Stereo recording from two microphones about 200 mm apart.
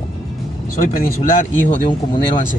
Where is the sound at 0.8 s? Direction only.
40° left (ahead or behind).